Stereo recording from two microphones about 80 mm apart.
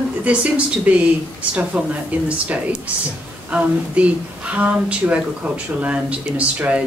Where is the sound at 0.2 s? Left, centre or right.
Centre.